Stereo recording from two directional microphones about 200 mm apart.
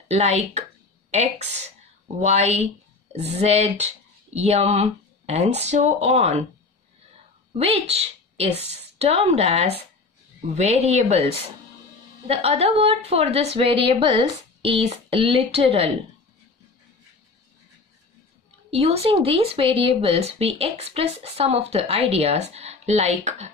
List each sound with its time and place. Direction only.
0.1 s speech: 35° right (ahead or behind)
7.5 s a woman's voice: 30° right (ahead or behind)
18.7 s speech: 30° right (ahead or behind)